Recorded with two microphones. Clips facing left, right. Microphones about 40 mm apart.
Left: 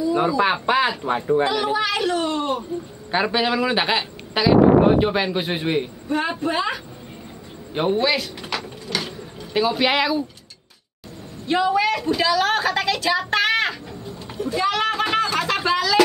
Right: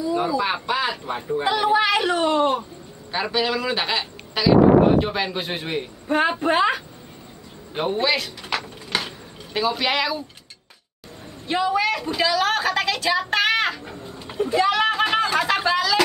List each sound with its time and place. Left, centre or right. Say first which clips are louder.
0.4 s speech: left 4 dB; left
1.4 s a child's voice: right 2 dB; centre
3.1 s a man's voice: left 2 dB; centre
6.0 s a woman's voice: right 7 dB; right
7.7 s a woman's voice: left 2 dB; centre
8.5 s gears: right 1 dB; centre
9.5 s a man's voice: left 3 dB; centre
11.4 s a woman's voice: left 2 dB; centre
14.3 s a sound: right 3 dB; right
14.6 s a sound: right 1 dB; centre